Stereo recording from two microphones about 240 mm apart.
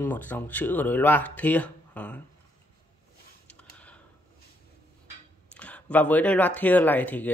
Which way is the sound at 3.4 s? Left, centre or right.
Centre.